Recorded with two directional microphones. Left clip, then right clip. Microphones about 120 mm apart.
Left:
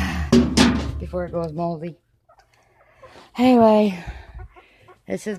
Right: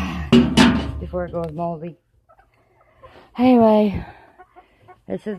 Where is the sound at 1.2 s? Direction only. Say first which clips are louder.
Even; 40° left (ahead or behind).